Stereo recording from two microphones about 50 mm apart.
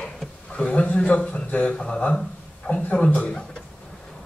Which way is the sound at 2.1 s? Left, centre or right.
Centre.